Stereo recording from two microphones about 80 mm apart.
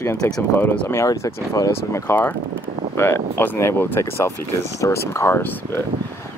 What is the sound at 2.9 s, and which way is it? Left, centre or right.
Speech, left.